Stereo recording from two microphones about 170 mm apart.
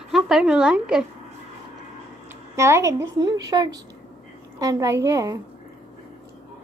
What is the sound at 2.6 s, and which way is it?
A woman's voice, 15° right (ahead or behind).